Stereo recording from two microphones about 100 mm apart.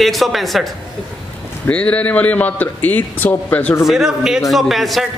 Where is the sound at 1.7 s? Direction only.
15° left (ahead or behind).